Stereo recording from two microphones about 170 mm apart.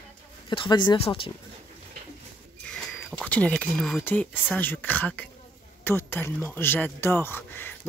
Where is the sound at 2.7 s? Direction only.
5° left (ahead or behind).